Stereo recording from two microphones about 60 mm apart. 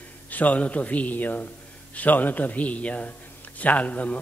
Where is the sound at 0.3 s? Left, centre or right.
Left.